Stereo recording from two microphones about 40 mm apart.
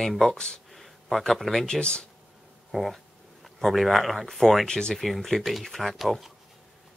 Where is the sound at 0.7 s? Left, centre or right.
Centre.